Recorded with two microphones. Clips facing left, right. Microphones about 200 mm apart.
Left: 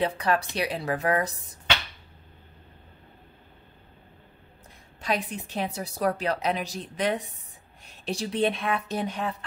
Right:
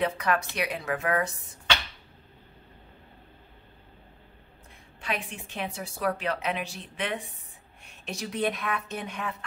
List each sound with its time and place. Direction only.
0.0 s a woman's voice: 30° left (ahead or behind)
5.0 s a woman's voice: 40° left (ahead or behind)